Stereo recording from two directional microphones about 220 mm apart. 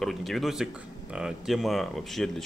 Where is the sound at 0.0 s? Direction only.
Centre (ahead or behind).